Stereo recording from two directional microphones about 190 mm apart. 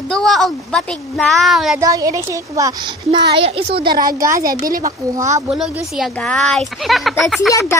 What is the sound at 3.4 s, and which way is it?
Speech, 30° right (ahead or behind).